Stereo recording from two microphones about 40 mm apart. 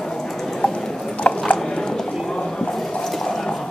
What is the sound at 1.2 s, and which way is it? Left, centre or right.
Drip, left.